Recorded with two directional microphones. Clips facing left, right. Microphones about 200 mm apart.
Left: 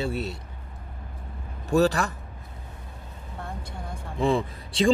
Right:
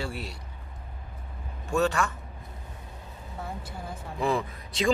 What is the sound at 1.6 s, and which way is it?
Speech, 35° left (ahead or behind).